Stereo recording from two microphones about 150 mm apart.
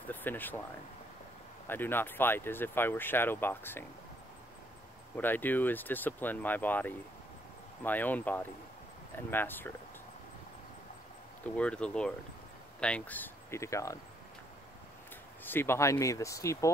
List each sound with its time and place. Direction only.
0.1 s speech: 10° left (ahead or behind)
1.7 s speech: 15° left (ahead or behind)
5.1 s speech: 10° left (ahead or behind)
11.4 s speech: 10° left (ahead or behind)
15.4 s speech: 15° left (ahead or behind)